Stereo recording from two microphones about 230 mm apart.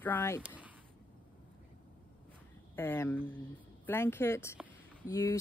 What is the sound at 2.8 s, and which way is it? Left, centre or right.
Speech, centre.